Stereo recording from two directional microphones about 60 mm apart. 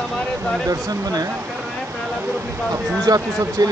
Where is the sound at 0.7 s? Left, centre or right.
Right.